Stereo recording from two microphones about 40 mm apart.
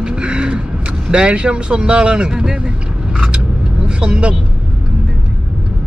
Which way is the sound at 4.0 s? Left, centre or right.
Right.